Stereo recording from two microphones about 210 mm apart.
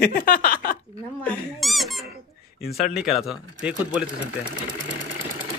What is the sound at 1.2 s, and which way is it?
Speech, centre (ahead or behind).